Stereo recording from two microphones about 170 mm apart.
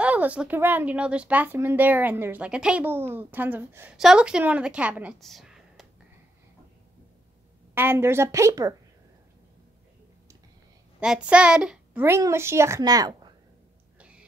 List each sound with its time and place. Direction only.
0.0 s speech: 10° right (ahead or behind)
5.2 s computer keyboard: centre (ahead or behind)
7.7 s speech: 15° right (ahead or behind)
11.0 s speech: 5° right (ahead or behind); by 13.3 s 20° right (ahead or behind)
13.9 s a sound: 5° right (ahead or behind)